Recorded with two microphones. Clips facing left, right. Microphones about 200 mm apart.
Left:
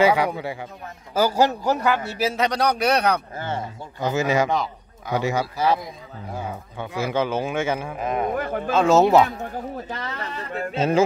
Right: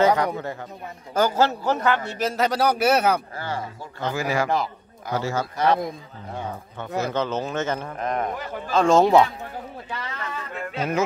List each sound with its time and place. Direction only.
0.0 s a man's voice: 10° left (ahead or behind); by 3.2 s 5° right (ahead or behind)
3.3 s speech: 25° left (ahead or behind)
4.5 s a sound: centre (ahead or behind)
5.1 s speech: 15° left (ahead or behind)
8.4 s speech: 55° left (ahead or behind)
8.7 s a man's voice: 5° left (ahead or behind)
9.8 s speech: 40° left (ahead or behind)